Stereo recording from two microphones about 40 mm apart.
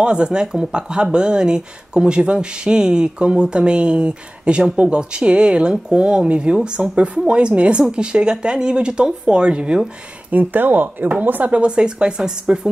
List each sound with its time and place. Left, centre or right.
0.0 s speech: right
10.3 s speech: right
11.5 s speech: right